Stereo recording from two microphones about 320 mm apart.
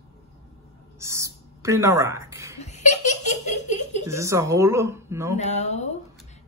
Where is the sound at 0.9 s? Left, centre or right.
Centre.